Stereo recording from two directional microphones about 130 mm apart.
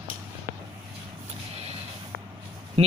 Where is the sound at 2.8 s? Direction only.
50° right (ahead or behind).